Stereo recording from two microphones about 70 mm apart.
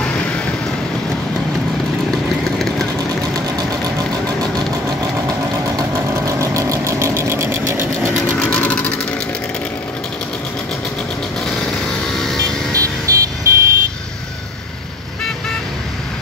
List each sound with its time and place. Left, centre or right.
0.0 s vehicle: centre
3.3 s engine: right
5.9 s engine: right
8.5 s vehicle: centre
12.7 s vehicle: right